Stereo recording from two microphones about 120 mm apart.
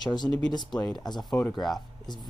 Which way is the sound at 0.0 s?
35° left (ahead or behind).